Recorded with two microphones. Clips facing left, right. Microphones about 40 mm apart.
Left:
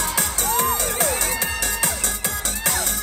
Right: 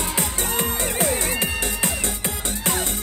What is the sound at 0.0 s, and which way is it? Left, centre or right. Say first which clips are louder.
Music: left 1 dB; right.